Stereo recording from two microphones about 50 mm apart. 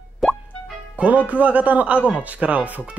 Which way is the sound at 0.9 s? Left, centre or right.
Right.